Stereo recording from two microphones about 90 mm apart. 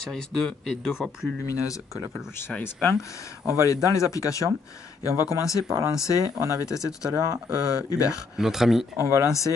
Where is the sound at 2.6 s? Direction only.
25° left (ahead or behind).